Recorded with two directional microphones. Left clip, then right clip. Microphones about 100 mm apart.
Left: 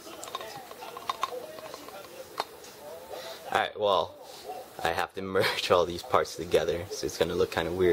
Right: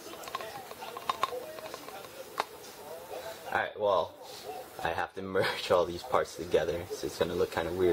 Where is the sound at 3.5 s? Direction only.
40° left (ahead or behind).